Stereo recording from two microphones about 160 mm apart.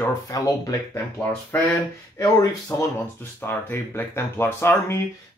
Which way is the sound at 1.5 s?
10° left (ahead or behind).